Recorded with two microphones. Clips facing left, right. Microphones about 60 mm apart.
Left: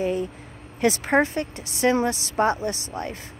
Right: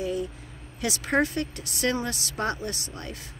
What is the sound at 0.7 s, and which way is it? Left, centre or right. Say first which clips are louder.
A woman's voice: left 5 dB; left.